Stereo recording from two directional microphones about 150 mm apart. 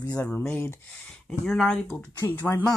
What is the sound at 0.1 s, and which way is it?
Speech, 10° left (ahead or behind).